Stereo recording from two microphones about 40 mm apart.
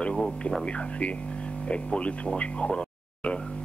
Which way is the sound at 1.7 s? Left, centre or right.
Left.